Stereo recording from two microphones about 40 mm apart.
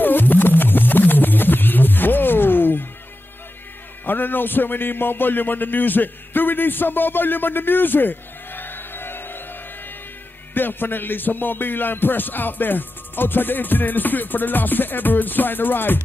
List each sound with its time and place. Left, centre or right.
0.0 s music: left
4.0 s a man's voice: left
10.5 s music: left